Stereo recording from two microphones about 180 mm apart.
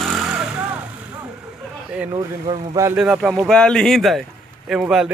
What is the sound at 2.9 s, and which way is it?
Speech, 5° right (ahead or behind).